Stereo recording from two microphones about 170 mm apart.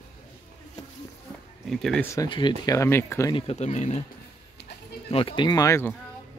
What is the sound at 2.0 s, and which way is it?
Speech, 20° left (ahead or behind).